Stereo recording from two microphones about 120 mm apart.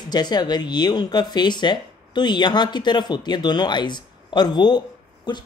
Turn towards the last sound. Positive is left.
turn(degrees=35)  # may be behind; listen again after turning